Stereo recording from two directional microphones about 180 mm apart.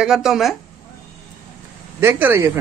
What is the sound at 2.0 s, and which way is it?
Speech, 10° right (ahead or behind).